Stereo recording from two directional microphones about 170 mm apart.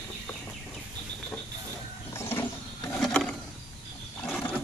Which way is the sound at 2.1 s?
15° left (ahead or behind).